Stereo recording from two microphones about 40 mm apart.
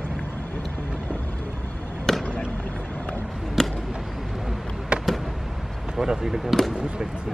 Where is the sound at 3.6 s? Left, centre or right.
Centre.